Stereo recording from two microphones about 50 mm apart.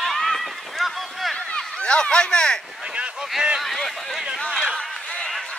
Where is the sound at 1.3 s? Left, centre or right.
Centre.